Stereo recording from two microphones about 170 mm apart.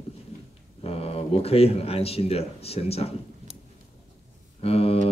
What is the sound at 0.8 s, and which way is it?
Speech, 35° left (ahead or behind).